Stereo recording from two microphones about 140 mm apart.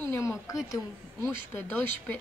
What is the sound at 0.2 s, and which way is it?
A woman's voice, 20° left (ahead or behind).